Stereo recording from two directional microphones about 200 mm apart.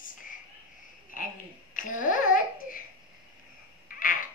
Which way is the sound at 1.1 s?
45° left (ahead or behind).